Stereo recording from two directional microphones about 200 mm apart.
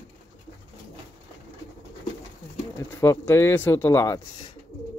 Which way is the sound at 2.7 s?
15° left (ahead or behind).